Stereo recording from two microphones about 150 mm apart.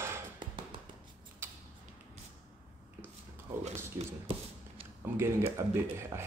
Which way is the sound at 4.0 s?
40° right (ahead or behind).